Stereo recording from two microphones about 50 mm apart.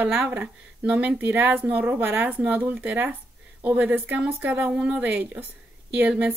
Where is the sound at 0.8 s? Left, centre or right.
Right.